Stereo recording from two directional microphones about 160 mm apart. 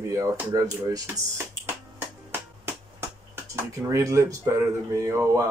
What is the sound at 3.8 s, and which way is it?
Speech, 20° right (ahead or behind).